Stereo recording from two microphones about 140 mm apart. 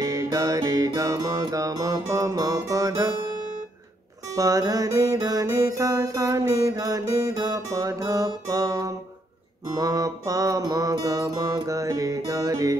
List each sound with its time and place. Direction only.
0.0 s music: 25° right (ahead or behind)
4.3 s music: 25° right (ahead or behind)